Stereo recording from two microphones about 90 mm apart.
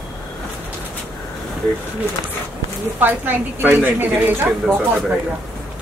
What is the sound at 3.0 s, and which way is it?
A woman's voice, 20° right (ahead or behind).